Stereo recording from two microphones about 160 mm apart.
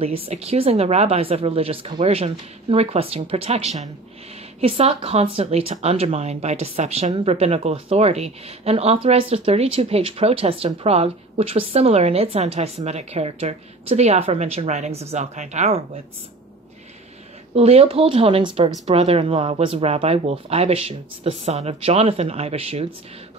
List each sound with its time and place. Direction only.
0.0 s speech: 40° right (ahead or behind)
17.6 s speech: 40° right (ahead or behind)